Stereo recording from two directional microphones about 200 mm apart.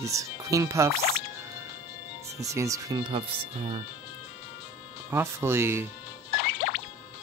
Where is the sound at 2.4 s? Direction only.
15° right (ahead or behind).